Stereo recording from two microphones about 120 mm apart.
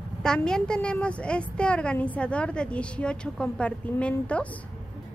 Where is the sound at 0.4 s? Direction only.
5° left (ahead or behind).